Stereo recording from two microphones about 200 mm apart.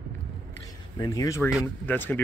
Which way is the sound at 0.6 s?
15° left (ahead or behind).